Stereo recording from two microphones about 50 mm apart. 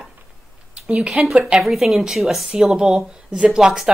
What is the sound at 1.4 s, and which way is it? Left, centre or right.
Speech, centre.